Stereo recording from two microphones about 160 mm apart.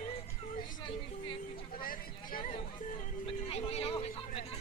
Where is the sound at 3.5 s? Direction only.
40° left (ahead or behind).